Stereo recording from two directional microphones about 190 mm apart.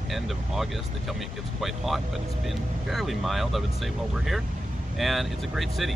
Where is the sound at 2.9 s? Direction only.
Centre (ahead or behind).